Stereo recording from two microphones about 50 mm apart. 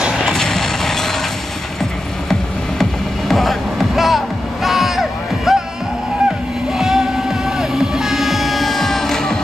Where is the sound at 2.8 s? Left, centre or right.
Centre.